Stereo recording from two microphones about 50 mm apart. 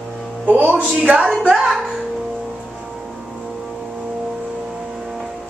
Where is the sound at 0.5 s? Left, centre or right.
Right.